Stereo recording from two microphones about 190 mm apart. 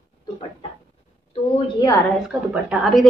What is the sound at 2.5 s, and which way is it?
Speech, 5° right (ahead or behind).